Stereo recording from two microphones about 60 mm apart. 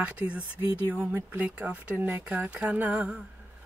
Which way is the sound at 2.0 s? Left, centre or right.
Right.